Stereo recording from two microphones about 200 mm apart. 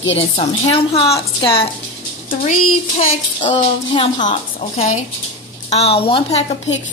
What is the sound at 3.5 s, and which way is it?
A woman's voice, 25° left (ahead or behind).